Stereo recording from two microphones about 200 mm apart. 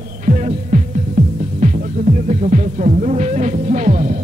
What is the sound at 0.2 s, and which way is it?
Music, 35° right (ahead or behind).